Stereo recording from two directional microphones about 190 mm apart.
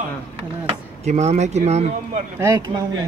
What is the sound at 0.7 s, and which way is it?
Speech, 35° right (ahead or behind).